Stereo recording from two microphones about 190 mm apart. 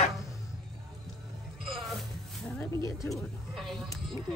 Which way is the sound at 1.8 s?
Centre (ahead or behind).